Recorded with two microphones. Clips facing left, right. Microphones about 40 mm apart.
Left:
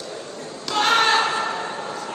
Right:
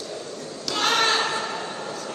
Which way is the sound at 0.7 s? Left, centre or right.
Centre.